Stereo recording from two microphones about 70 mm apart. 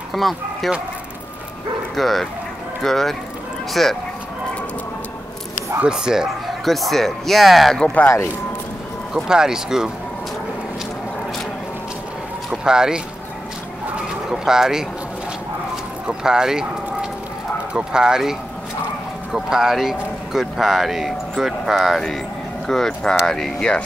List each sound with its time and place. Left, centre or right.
0.1 s speech: centre
2.0 s speech: centre
5.9 s speech: centre
7.8 s speech: left
9.1 s speech: centre
12.4 s speech: centre
13.9 s bird: centre
16.1 s speech: centre
19.3 s speech: centre